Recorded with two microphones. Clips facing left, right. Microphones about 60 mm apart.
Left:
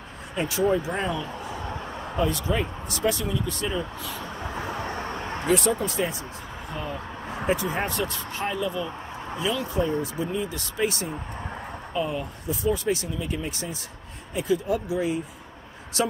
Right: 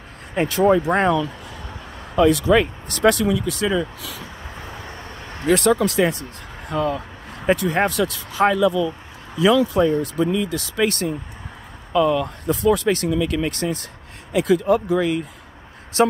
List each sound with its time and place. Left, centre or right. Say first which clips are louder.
0.3 s speech: right 7 dB; right
2.1 s speech: right 10 dB; right
5.5 s speech: right 7 dB; right
7.4 s speech: right 7 dB; right
9.4 s speech: right 10 dB; right
11.9 s speech: right 11 dB; right
14.3 s speech: right 8 dB; right
14.9 s speech: right 6 dB; right
16.0 s speech: right 9 dB; right